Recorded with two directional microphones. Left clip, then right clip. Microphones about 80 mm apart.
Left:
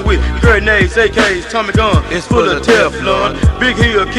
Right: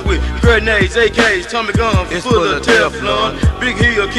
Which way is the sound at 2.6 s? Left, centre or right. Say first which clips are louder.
Left 2 dB; right.